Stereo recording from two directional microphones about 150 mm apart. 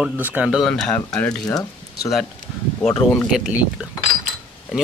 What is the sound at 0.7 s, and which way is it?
Speech, 5° left (ahead or behind).